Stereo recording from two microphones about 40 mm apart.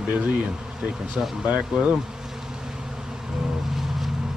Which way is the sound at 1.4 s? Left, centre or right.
Right.